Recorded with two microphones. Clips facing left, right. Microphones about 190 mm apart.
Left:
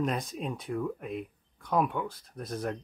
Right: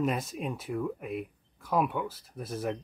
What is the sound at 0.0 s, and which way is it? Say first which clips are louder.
Speech: right 1 dB; 5° right (ahead or behind).